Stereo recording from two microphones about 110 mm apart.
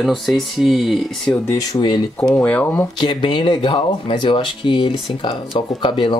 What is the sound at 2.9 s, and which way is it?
Speech, 45° left (ahead or behind).